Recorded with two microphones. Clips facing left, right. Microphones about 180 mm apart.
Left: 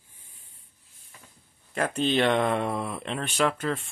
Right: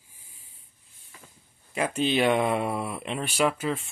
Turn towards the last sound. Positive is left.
turn(degrees=-5)  # may be behind; listen again after turning